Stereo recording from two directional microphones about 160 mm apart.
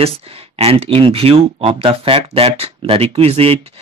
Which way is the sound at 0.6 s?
40° right (ahead or behind).